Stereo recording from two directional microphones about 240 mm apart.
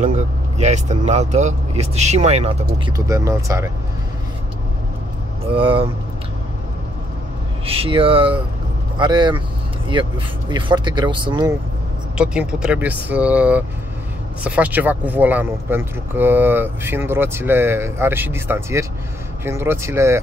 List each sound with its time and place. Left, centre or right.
0.0 s speech: right
3.1 s speech: centre
5.5 s speech: right
7.6 s speech: right
12.2 s speech: centre